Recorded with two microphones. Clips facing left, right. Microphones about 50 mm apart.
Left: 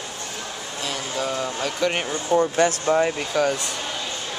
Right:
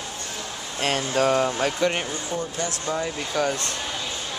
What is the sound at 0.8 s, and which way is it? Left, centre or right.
Speech, right.